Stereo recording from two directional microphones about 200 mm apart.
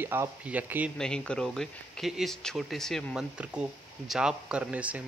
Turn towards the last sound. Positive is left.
turn(degrees=-5)  # may be behind; listen again after turning